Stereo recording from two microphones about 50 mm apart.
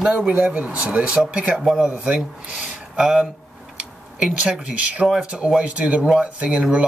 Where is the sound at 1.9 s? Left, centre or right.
Right.